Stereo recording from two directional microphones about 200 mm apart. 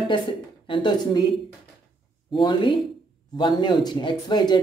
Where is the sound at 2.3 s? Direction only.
20° left (ahead or behind).